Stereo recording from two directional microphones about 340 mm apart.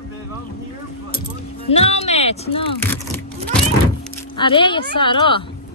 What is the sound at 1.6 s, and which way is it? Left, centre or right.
Speech, centre.